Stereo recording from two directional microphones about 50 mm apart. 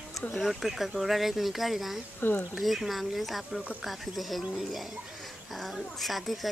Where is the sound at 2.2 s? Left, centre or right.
Left.